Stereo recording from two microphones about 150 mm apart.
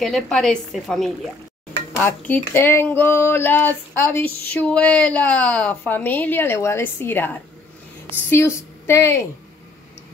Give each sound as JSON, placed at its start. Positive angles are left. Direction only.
{"t": 0.0, "sound": "a woman's voice", "side_deg": 5}
{"t": 2.0, "sound": "a sound", "side_deg": 15}
{"t": 8.3, "sound": "a woman's voice", "side_deg": 15}